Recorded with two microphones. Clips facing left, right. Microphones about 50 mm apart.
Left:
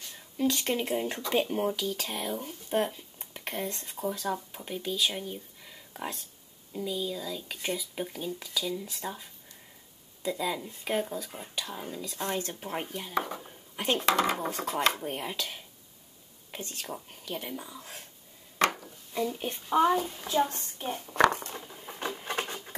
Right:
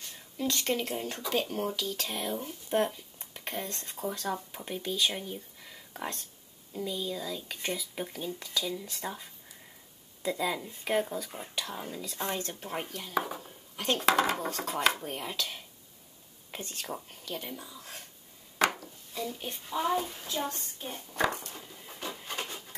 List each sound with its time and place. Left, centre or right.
0.4 s speech: centre
3.2 s a sound: centre
3.5 s speech: centre
13.4 s a sound: centre
14.0 s speech: centre
14.3 s speech: centre
15.0 s speech: centre
17.2 s speech: centre
19.7 s a woman's voice: left
20.2 s a sound: left
20.5 s a woman's voice: left
21.3 s a sound: left